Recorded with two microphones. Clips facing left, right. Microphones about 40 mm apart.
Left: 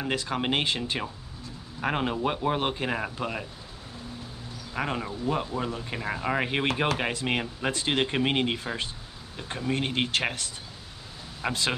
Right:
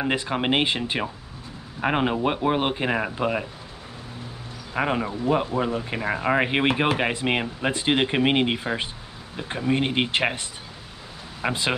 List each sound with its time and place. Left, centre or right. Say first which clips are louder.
0.0 s speech: right 4 dB; right
4.7 s speech: right 6 dB; right